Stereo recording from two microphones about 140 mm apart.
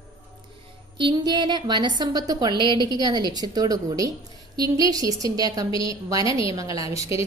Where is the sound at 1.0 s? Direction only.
30° right (ahead or behind).